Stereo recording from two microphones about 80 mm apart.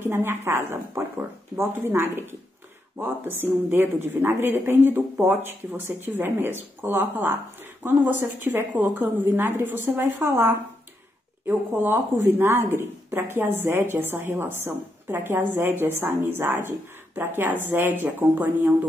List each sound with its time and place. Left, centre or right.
0.0 s speech: right